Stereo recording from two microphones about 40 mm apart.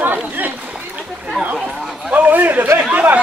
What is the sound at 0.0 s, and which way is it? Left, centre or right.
Chatter, right.